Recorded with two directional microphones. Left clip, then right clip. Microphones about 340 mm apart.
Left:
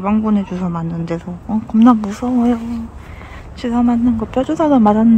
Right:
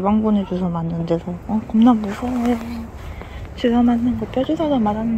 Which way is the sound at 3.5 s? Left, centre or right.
Centre.